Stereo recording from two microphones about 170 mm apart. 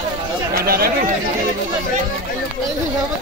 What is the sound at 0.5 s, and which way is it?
Speech, 60° right (ahead or behind).